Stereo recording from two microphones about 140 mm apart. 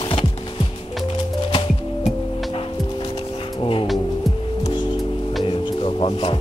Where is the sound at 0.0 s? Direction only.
40° left (ahead or behind).